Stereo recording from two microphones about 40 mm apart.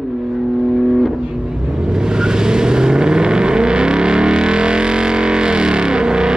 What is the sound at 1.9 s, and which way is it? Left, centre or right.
Vehicle, centre.